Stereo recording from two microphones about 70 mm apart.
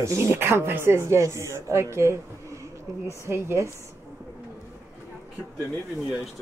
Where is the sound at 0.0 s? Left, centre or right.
Right.